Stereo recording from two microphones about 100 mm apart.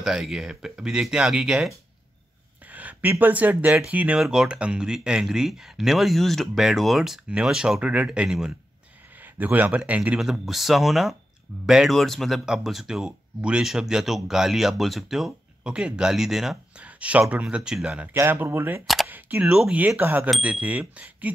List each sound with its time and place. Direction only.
0.0 s speech: 5° right (ahead or behind)
9.2 s speech: 20° right (ahead or behind)
18.1 s speech: 20° right (ahead or behind)
19.0 s camera: 20° right (ahead or behind)
19.4 s speech: 10° right (ahead or behind)